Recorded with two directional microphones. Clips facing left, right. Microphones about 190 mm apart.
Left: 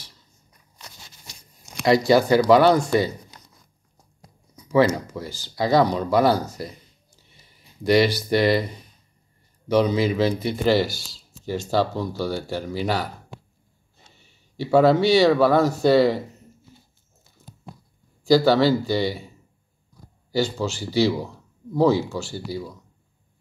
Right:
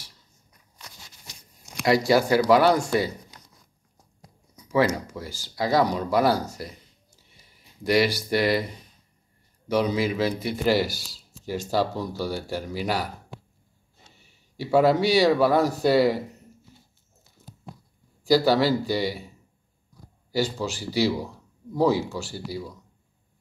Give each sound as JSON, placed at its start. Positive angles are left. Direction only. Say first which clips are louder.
{"t": 0.7, "sound": "a sound", "louder": "left 2 dB", "side_deg": 25}
{"t": 1.9, "sound": "speech", "louder": "left 3 dB", "side_deg": -5}
{"t": 4.9, "sound": "speech", "louder": "left 3 dB", "side_deg": -5}
{"t": 7.8, "sound": "speech", "louder": "left 3 dB", "side_deg": -5}
{"t": 9.7, "sound": "speech", "louder": "left 4 dB", "side_deg": -5}
{"t": 11.0, "sound": "a sound", "louder": "left 1 dB", "side_deg": -10}
{"t": 11.7, "sound": "speech", "louder": "left 2 dB", "side_deg": -10}
{"t": 14.6, "sound": "speech", "louder": "left 3 dB", "side_deg": -5}
{"t": 18.2, "sound": "speech", "louder": "left 3 dB", "side_deg": -5}
{"t": 20.5, "sound": "speech", "louder": "left 4 dB", "side_deg": -10}